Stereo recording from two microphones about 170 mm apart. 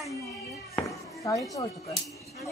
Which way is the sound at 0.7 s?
20° left (ahead or behind).